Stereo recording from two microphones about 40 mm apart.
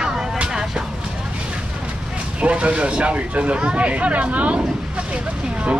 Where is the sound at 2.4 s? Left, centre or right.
Right.